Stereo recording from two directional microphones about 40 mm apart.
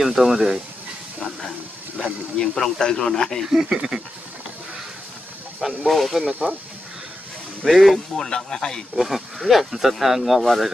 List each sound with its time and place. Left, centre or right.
0.0 s speech: centre
2.0 s speech: left
2.4 s speech: centre
3.4 s speech: centre
5.6 s speech: centre
6.4 s speech: right
7.6 s speech: centre
8.2 s speech: centre
8.9 s speech: centre